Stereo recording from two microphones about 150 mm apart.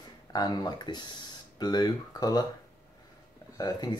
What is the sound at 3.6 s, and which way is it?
Speech, 25° left (ahead or behind).